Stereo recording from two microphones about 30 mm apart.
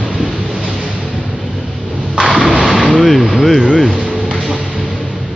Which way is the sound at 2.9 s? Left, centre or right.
Centre.